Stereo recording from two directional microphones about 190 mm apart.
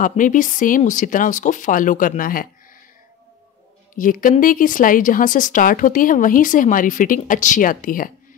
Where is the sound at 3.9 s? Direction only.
45° left (ahead or behind).